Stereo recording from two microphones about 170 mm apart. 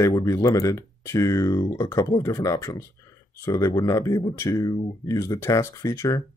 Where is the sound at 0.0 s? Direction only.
20° left (ahead or behind).